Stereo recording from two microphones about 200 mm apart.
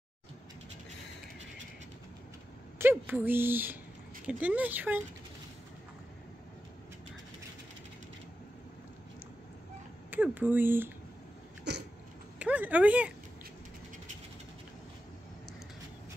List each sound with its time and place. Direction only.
2.8 s speech: 10° right (ahead or behind)
10.1 s speech: 10° right (ahead or behind)
11.7 s a sound: 55° right (ahead or behind)
12.4 s speech: 5° right (ahead or behind)